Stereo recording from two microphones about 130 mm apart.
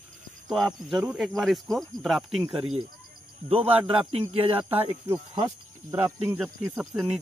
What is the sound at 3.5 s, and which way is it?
A man's voice, 45° right (ahead or behind).